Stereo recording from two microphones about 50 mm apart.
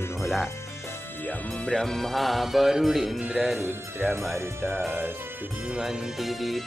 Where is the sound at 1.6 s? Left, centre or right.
Centre.